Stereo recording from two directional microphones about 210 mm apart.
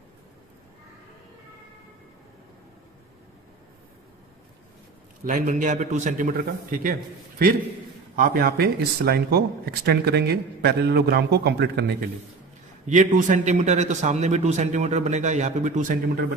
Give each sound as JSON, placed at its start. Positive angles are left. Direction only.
{"t": 5.2, "sound": "a man's voice", "side_deg": -35}
{"t": 12.8, "sound": "a man's voice", "side_deg": -35}